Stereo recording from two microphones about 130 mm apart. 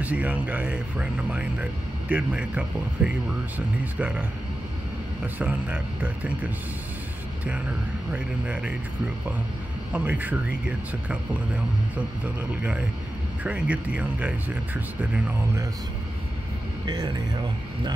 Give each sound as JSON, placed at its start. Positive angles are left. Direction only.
{"t": 0.0, "sound": "speech", "side_deg": -10}
{"t": 8.1, "sound": "speech", "side_deg": -10}
{"t": 9.9, "sound": "speech", "side_deg": -10}
{"t": 16.8, "sound": "speech", "side_deg": -35}